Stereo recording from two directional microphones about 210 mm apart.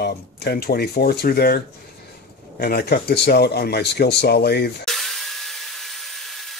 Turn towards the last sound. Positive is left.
turn(degrees=0)  # may be behind; listen again after turning